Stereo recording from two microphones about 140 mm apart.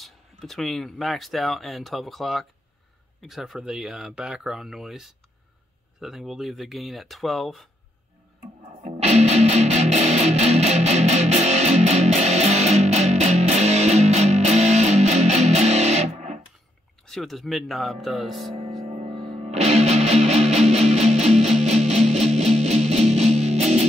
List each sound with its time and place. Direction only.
0.0 s speech: centre (ahead or behind)
9.0 s music: 50° right (ahead or behind)
17.0 s speech: centre (ahead or behind)
18.8 s music: 50° right (ahead or behind)